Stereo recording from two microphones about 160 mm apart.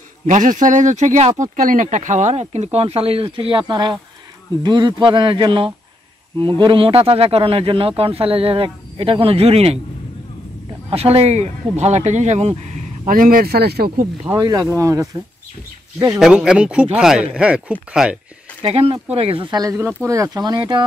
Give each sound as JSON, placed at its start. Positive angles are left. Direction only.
{"t": 0.3, "sound": "a man's voice", "side_deg": -55}
{"t": 10.9, "sound": "speech", "side_deg": -40}
{"t": 13.0, "sound": "speech", "side_deg": -60}
{"t": 14.3, "sound": "a man's voice", "side_deg": -25}
{"t": 16.1, "sound": "speech", "side_deg": -5}
{"t": 18.6, "sound": "a man's voice", "side_deg": -35}